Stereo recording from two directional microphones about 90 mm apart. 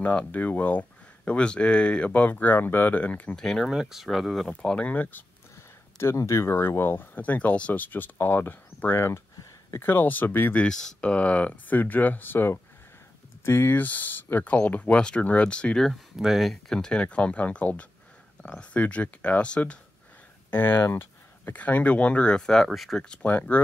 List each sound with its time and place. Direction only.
0.0 s speech: 15° left (ahead or behind)
3.4 s speech: 5° left (ahead or behind)
4.5 s speech: 15° left (ahead or behind)
5.9 s speech: 35° left (ahead or behind)
10.6 s speech: 10° left (ahead or behind)
16.2 s speech: 5° right (ahead or behind)
23.2 s speech: 15° left (ahead or behind)